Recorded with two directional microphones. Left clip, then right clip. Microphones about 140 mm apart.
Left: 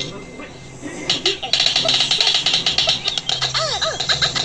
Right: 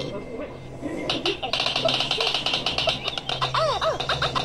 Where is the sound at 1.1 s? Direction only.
25° right (ahead or behind).